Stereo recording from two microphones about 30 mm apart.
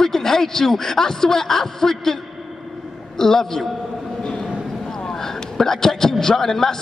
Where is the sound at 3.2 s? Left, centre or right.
Centre.